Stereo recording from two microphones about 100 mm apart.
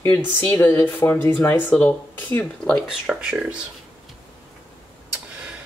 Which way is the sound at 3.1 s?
5° right (ahead or behind).